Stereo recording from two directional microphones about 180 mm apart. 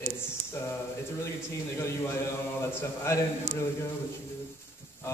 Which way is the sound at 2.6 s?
15° left (ahead or behind).